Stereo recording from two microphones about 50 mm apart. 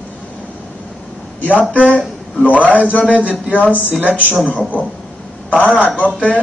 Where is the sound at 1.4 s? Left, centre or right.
Left.